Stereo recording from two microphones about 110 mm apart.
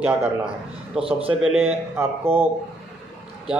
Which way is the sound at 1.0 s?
60° right (ahead or behind).